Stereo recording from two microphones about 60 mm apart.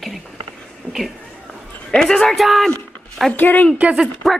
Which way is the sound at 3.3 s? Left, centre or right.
Left.